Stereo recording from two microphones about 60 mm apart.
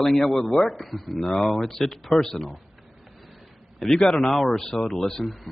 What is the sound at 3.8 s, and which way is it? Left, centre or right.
A man's voice, centre.